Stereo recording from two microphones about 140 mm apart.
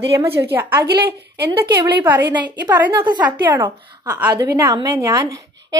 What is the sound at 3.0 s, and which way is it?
Speech, 30° right (ahead or behind).